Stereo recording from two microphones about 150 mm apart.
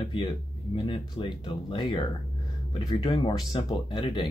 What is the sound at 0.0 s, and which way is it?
Speech, 35° left (ahead or behind).